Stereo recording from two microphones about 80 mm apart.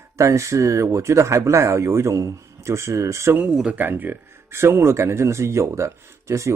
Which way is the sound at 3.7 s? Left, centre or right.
Right.